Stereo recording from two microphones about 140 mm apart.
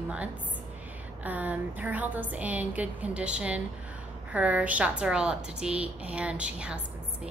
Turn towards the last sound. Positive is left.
turn(degrees=-10)  # may be behind; listen again after turning